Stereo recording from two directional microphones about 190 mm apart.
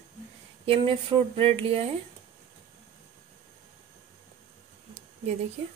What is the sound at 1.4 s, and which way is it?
Speech, 30° right (ahead or behind).